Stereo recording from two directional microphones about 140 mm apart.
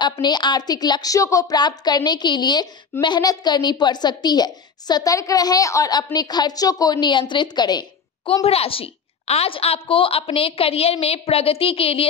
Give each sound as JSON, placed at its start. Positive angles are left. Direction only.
{"t": 0.0, "sound": "a woman's voice", "side_deg": 30}
{"t": 8.5, "sound": "a woman's voice", "side_deg": 40}